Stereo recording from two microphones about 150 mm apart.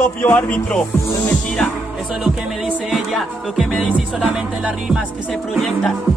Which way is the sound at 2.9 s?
Centre (ahead or behind).